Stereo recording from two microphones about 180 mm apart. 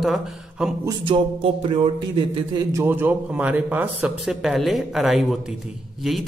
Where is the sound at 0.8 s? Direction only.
30° right (ahead or behind).